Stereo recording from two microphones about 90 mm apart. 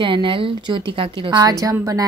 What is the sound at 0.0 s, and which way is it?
A woman's voice, 70° right (ahead or behind).